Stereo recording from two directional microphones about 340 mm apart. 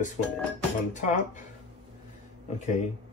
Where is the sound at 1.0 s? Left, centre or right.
Left.